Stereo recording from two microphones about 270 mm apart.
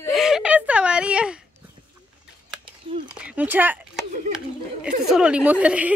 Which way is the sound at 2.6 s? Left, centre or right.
Centre.